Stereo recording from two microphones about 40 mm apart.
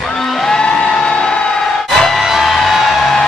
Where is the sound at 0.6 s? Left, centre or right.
Left.